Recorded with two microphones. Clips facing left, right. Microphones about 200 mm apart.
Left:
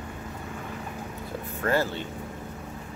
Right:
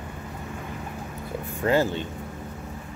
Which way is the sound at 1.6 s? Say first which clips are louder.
Right 4 dB; 15° right (ahead or behind).